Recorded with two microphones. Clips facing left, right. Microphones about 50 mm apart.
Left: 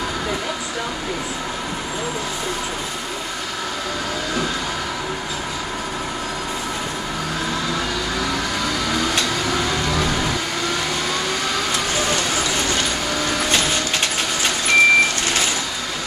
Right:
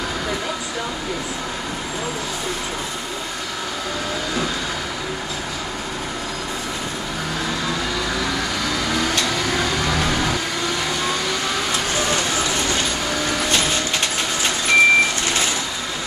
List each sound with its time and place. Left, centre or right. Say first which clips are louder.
11.9 s vehicle: even; right
13.4 s vehicle: left 1 dB; left
14.7 s vehicle: even; right